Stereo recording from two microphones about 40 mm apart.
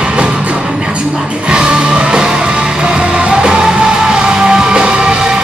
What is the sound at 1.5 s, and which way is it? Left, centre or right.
Music, right.